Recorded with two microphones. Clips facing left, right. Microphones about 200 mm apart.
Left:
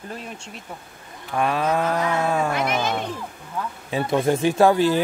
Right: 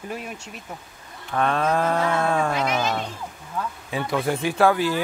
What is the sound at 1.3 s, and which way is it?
Speech, 5° left (ahead or behind).